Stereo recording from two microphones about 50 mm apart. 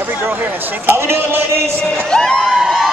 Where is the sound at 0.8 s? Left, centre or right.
Right.